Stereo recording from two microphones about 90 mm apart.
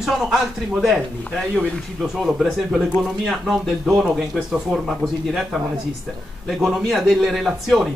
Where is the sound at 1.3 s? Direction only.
10° left (ahead or behind).